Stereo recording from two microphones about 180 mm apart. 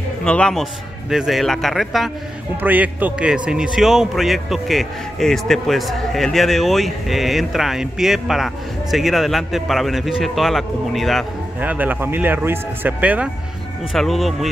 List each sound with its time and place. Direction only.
0.2 s a man's voice: 5° left (ahead or behind)